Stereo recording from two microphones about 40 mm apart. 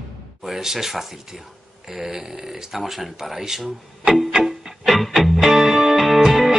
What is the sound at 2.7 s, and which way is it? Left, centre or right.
Speech, centre.